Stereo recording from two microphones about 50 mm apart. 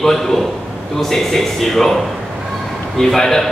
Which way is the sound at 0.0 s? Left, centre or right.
Centre.